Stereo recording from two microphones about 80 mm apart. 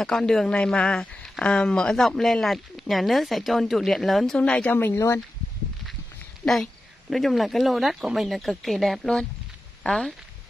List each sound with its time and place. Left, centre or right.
0.0 s speech: centre
4.4 s speech: centre
4.7 s speech: left
6.4 s speech: centre